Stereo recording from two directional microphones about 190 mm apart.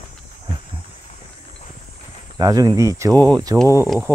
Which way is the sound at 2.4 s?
20° right (ahead or behind).